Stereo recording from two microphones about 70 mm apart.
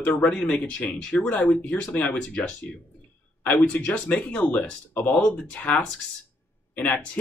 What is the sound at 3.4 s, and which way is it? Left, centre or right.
Speech, centre.